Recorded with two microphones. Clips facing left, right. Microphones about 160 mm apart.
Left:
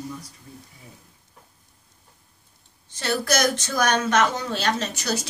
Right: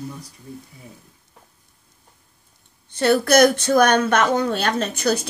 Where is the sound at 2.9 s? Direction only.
60° right (ahead or behind).